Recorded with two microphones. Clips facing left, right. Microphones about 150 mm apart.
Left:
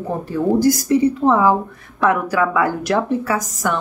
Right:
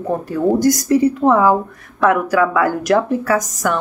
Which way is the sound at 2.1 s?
25° left (ahead or behind).